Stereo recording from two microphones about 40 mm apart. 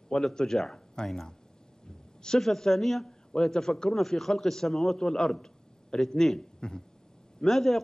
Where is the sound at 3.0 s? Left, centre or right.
Centre.